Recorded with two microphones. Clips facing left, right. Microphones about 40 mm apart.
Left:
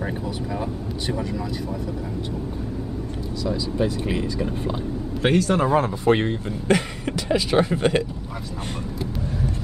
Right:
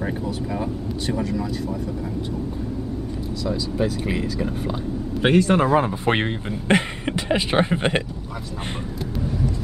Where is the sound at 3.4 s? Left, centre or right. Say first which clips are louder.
Even; centre.